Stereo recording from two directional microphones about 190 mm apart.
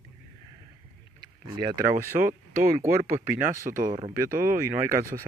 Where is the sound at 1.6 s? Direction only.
20° right (ahead or behind).